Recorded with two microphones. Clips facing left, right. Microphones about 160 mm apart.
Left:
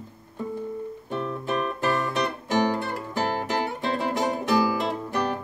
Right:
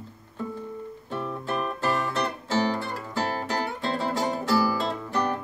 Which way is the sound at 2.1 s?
15° left (ahead or behind).